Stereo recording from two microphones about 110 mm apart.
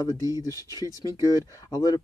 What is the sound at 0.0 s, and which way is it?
Speech, 35° left (ahead or behind).